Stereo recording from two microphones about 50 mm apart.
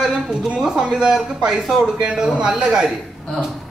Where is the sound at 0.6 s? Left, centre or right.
Centre.